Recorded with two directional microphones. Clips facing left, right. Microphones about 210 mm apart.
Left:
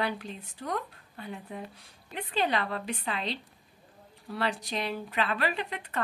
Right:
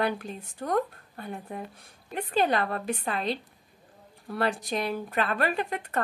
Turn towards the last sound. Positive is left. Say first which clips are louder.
# right 5 dB
turn(degrees=-50)  # may be behind; listen again after turning